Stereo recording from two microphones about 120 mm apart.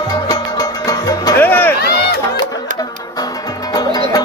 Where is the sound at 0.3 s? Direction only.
30° left (ahead or behind).